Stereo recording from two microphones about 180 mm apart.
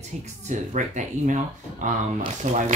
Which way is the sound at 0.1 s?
40° right (ahead or behind).